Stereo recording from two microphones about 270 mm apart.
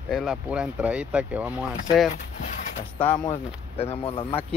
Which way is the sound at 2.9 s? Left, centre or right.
Centre.